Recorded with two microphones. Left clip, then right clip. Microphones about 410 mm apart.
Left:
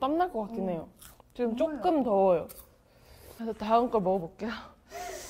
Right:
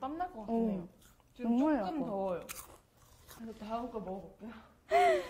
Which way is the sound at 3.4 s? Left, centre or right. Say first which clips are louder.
Left 13 dB; left.